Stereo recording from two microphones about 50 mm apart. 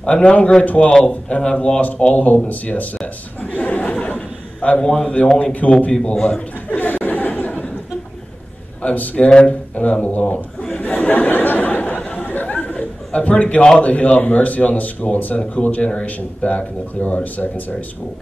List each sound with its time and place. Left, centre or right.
0.0 s a man's voice: left
1.8 s a man's voice: left
6.1 s a man's voice: centre
6.7 s laughter: left
8.8 s a man's voice: left
10.7 s a sound: left
13.7 s speech: left